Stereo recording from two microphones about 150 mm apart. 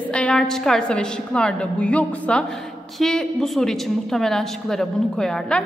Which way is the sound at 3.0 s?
5° left (ahead or behind).